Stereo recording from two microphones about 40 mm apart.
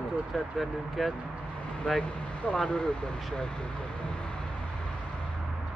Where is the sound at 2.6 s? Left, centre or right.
Left.